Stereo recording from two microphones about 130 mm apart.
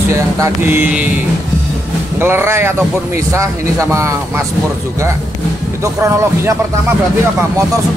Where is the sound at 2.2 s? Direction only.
20° right (ahead or behind).